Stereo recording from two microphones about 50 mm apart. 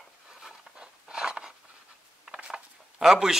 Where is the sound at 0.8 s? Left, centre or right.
Centre.